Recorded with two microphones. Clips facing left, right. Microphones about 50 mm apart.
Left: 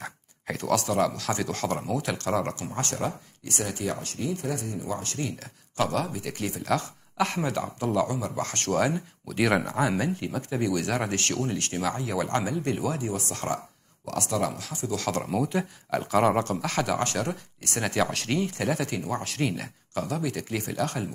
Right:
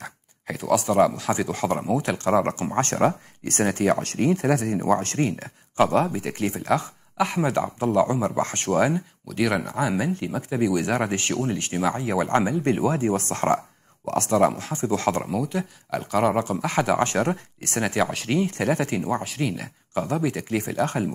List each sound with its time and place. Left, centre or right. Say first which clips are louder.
0.0 s speech: even; centre; by 2.6 s right
2.7 s speech: right 9 dB; right
5.2 s speech: right 8 dB; right
6.6 s speech: right 1 dB; centre
8.1 s speech: right 6 dB; right
8.7 s speech: right 4 dB; centre
9.3 s speech: even; centre; by 13.1 s right
13.1 s speech: right 8 dB; right
15.2 s speech: right 1 dB; centre
16.6 s speech: right 5 dB; centre
17.7 s speech: right 3 dB; centre
19.9 s speech: right 5 dB; centre